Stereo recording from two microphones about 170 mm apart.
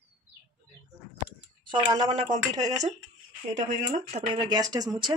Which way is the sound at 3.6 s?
45° right (ahead or behind).